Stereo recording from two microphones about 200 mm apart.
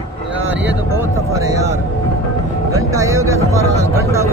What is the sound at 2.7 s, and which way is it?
Music, 15° right (ahead or behind).